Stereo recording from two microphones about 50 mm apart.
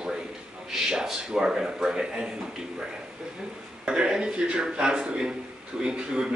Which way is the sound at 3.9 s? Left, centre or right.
Centre.